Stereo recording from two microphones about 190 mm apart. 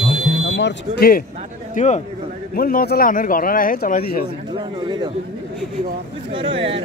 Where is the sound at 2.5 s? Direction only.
50° left (ahead or behind).